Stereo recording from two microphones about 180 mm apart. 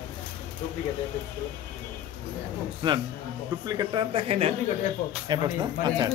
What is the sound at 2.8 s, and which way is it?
Speech, 25° right (ahead or behind).